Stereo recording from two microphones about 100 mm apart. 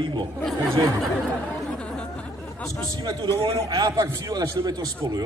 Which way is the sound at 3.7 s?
45° right (ahead or behind).